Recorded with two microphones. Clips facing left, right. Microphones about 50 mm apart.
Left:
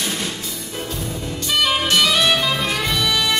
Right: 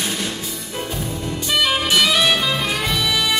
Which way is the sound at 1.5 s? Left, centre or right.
Centre.